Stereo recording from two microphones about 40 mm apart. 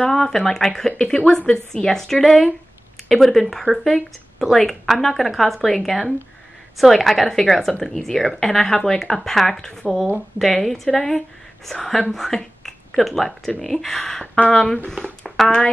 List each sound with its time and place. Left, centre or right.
0.1 s speech: centre
2.2 s speech: centre
12.4 s a sound: centre
13.6 s speech: centre